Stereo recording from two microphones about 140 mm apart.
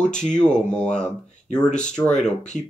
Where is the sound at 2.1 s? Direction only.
55° left (ahead or behind).